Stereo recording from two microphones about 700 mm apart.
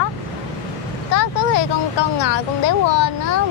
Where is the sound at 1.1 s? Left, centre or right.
Left.